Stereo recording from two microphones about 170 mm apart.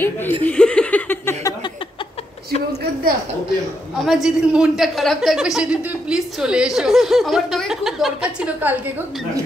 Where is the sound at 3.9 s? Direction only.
Centre (ahead or behind).